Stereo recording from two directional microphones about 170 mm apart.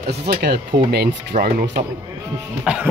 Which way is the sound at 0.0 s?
70° right (ahead or behind).